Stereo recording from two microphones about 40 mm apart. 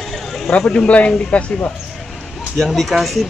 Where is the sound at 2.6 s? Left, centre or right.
Centre.